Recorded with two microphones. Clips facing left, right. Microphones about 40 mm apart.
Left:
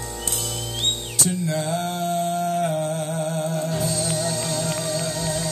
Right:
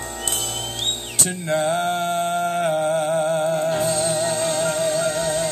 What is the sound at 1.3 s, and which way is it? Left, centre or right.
Music, right.